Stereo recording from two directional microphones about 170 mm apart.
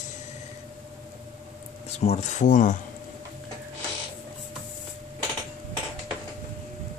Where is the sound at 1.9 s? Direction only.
40° left (ahead or behind).